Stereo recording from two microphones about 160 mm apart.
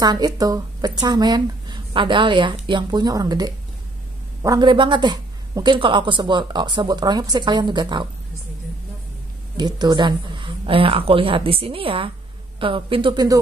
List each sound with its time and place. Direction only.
0.0 s speech: 25° right (ahead or behind)
9.6 s a woman's voice: 25° right (ahead or behind)